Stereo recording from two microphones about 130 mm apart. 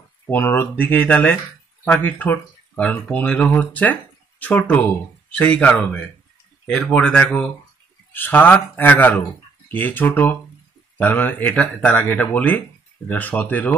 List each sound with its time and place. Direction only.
0.3 s speech: 15° left (ahead or behind)